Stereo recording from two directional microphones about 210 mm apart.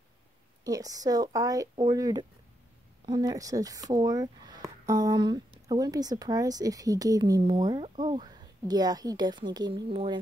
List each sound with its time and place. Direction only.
0.7 s speech: 15° right (ahead or behind)